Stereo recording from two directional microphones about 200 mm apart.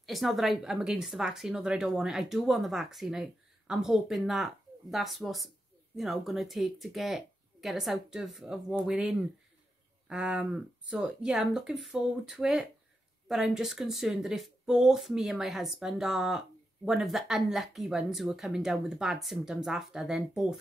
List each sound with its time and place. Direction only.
0.0 s speech: centre (ahead or behind)